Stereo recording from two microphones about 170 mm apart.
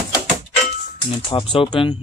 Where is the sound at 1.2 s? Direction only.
30° left (ahead or behind).